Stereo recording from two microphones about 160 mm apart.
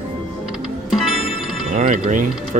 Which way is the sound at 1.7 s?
50° right (ahead or behind).